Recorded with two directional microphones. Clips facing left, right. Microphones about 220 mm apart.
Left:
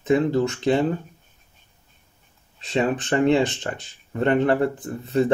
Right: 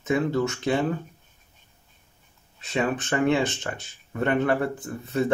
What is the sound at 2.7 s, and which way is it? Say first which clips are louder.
Speech: left 4 dB; 25° left (ahead or behind).